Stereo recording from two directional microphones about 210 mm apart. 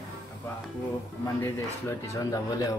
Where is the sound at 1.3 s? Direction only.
15° left (ahead or behind).